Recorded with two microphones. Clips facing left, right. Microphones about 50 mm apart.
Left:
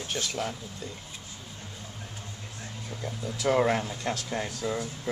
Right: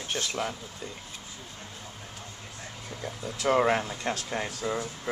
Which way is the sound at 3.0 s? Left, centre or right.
Centre.